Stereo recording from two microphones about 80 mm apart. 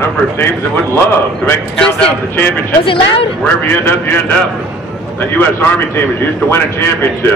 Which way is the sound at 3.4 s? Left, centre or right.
Left.